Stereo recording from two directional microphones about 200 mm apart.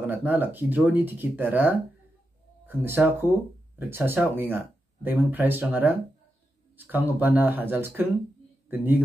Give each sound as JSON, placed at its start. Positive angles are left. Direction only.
{"t": 0.0, "sound": "speech", "side_deg": -10}